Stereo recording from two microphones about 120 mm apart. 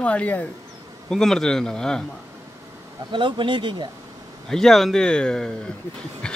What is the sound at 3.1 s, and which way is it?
Speech, 45° right (ahead or behind).